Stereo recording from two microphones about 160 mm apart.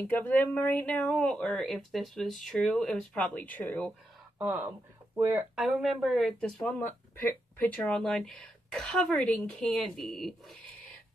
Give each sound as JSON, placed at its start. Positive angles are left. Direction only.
{"t": 0.0, "sound": "speech", "side_deg": 10}
{"t": 4.4, "sound": "speech", "side_deg": -15}
{"t": 5.6, "sound": "speech", "side_deg": 0}